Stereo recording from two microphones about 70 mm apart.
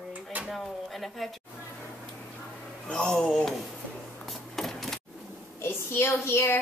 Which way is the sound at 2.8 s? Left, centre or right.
Centre.